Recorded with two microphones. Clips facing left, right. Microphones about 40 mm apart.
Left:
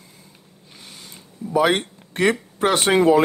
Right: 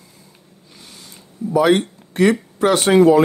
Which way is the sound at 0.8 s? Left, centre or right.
Left.